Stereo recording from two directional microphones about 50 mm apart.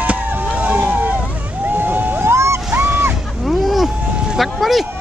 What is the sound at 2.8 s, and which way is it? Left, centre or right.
Goose, right.